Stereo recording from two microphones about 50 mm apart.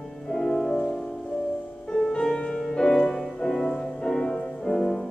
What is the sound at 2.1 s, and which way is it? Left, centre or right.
Music, centre.